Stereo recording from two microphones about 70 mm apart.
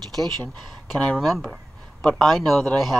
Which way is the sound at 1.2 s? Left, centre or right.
Centre.